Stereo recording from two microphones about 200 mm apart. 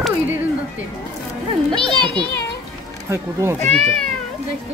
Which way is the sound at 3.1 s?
15° right (ahead or behind).